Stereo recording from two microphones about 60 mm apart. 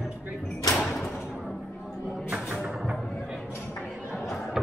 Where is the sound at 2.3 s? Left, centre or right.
Centre.